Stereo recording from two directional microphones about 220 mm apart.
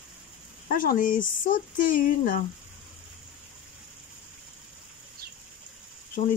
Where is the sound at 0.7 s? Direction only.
40° left (ahead or behind).